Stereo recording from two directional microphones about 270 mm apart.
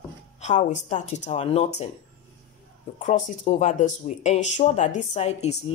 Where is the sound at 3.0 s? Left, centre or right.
Left.